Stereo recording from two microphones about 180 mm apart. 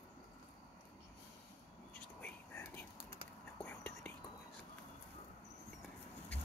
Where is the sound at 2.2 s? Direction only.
10° left (ahead or behind).